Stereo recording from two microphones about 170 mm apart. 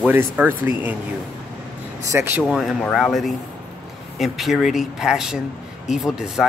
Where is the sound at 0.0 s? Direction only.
10° right (ahead or behind).